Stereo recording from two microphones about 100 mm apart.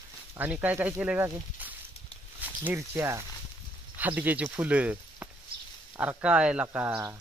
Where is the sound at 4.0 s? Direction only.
15° right (ahead or behind).